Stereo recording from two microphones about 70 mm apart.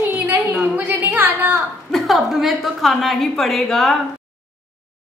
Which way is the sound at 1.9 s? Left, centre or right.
Centre.